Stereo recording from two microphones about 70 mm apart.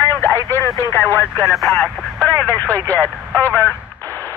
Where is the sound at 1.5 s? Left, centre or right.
Centre.